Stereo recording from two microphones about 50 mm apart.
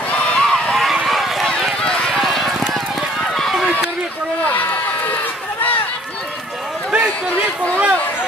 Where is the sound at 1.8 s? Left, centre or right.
Centre.